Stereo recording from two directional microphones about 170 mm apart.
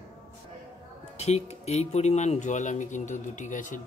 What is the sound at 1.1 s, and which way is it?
Speech, 40° left (ahead or behind).